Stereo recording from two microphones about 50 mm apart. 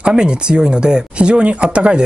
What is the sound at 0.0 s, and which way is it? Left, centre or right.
Speech, centre.